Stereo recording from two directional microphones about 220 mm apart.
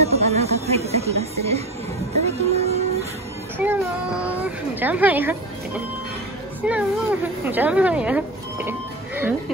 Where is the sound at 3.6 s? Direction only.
5° right (ahead or behind).